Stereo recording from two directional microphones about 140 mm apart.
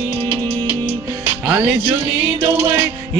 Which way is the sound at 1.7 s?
10° right (ahead or behind).